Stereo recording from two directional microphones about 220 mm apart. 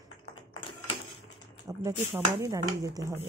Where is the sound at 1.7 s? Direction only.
15° right (ahead or behind).